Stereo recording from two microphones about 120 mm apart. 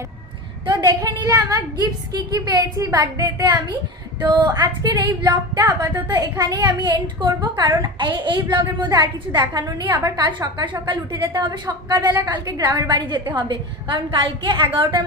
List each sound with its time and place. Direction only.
0.7 s a woman's voice: 35° right (ahead or behind)